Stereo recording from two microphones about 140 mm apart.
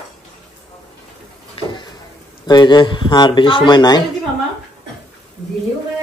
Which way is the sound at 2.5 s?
30° left (ahead or behind).